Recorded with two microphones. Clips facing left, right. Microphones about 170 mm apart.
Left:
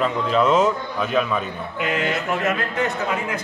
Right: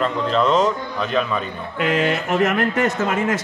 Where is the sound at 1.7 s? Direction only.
80° right.